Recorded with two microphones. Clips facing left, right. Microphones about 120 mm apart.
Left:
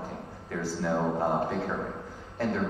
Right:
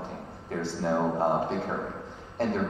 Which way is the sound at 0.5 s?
25° right (ahead or behind).